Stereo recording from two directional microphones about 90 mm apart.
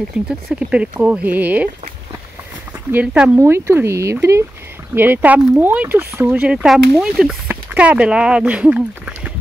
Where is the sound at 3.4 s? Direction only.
30° right (ahead or behind).